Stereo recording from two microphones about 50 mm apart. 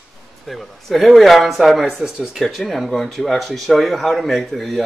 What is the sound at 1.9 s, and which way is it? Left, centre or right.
Speech, centre.